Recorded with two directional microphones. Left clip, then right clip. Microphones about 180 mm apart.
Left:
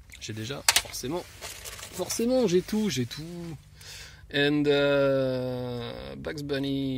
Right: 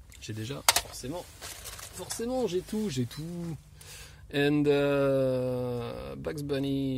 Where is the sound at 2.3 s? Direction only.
45° left (ahead or behind).